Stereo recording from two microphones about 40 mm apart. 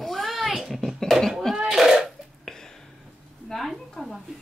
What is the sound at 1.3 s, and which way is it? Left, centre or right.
Cough, centre.